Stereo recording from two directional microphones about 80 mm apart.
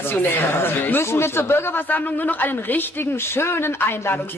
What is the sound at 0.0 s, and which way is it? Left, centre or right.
Speech, left.